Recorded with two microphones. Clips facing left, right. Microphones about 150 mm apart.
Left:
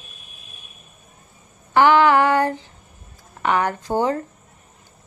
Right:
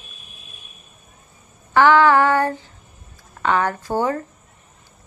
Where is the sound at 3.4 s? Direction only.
15° left (ahead or behind).